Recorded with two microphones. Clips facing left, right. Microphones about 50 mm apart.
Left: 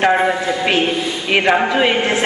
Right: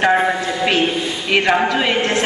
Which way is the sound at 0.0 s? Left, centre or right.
Centre.